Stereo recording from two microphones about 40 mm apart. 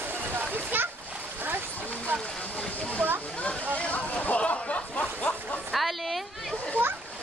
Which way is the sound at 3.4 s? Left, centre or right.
Left.